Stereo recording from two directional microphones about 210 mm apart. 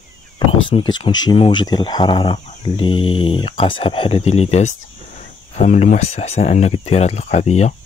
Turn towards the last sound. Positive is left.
turn(degrees=30)  # may be behind; listen again after turning